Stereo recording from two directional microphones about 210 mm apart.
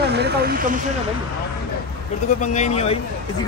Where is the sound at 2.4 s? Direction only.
35° left (ahead or behind).